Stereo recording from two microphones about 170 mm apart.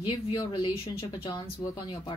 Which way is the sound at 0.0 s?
30° left (ahead or behind).